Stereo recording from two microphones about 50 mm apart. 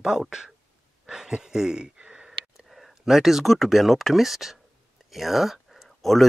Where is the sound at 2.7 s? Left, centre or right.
Centre.